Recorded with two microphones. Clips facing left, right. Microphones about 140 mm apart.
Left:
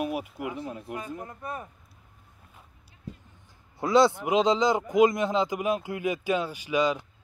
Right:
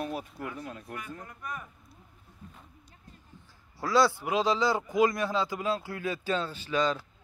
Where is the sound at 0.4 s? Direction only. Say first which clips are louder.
Left 5 dB; 15° left (ahead or behind).